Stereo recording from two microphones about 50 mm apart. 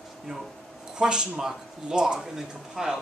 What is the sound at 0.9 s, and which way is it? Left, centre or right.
Speech, centre.